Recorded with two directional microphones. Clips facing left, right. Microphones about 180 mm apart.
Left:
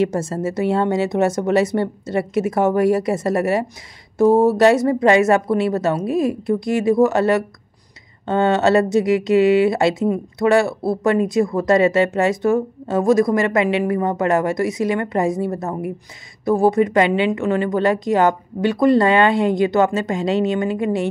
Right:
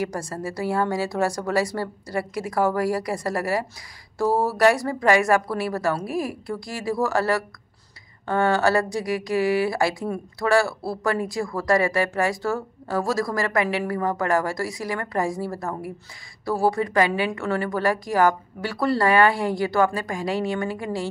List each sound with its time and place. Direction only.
0.0 s speech: 25° left (ahead or behind)